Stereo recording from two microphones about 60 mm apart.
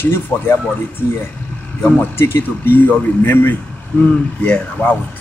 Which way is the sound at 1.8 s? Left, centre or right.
Left.